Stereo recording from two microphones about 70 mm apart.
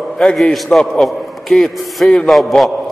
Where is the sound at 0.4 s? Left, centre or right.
Centre.